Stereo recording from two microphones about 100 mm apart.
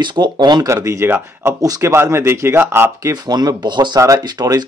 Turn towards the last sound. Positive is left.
turn(degrees=-40)  # may be behind; listen again after turning